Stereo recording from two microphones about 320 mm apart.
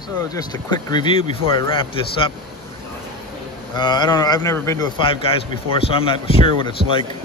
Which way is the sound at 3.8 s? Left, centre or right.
Centre.